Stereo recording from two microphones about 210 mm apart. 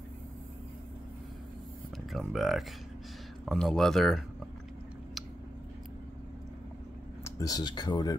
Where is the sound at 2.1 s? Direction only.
Centre (ahead or behind).